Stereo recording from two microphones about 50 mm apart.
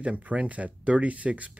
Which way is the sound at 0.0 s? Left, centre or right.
Right.